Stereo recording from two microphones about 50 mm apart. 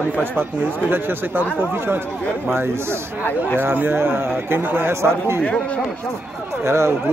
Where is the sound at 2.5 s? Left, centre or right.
Right.